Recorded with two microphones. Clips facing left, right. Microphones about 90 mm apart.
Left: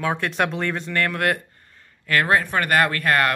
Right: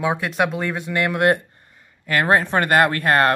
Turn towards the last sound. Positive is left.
turn(degrees=-30)  # may be behind; listen again after turning